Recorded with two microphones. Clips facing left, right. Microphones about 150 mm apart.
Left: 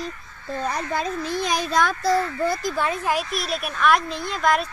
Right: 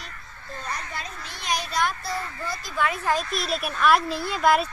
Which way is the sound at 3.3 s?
Centre (ahead or behind).